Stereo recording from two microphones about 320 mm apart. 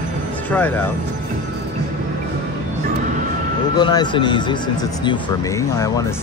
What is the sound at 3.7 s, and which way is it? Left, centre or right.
Speech, centre.